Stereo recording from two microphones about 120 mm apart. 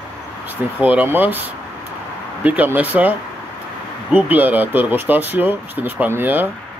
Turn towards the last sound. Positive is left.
turn(degrees=-15)  # may be behind; listen again after turning